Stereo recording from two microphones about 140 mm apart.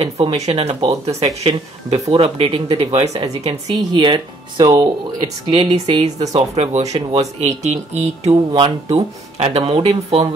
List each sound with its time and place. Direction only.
0.0 s speech: 45° right (ahead or behind); by 4.8 s 30° right (ahead or behind)
6.0 s a woman's voice: 25° right (ahead or behind)
6.3 s speech: 50° right (ahead or behind)
8.5 s speech: 35° right (ahead or behind)
8.8 s speech: 45° right (ahead or behind)